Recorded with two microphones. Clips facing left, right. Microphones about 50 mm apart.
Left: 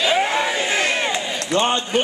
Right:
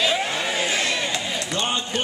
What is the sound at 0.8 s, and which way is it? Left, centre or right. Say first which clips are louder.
Crowd: left 4 dB; left.